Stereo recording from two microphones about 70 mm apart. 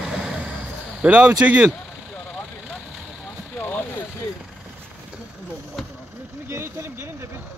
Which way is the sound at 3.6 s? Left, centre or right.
Left.